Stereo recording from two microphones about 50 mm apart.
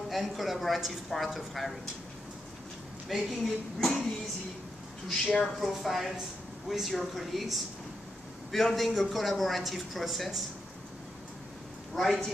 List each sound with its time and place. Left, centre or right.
0.1 s speech: centre
3.1 s speech: centre
5.4 s speech: centre
11.9 s speech: centre